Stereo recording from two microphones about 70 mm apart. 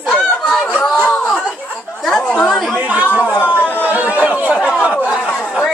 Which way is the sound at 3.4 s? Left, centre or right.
Left.